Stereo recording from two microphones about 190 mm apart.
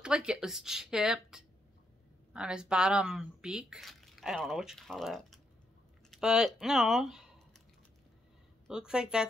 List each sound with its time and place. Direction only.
0.0 s speech: 5° right (ahead or behind)
8.6 s speech: 5° right (ahead or behind)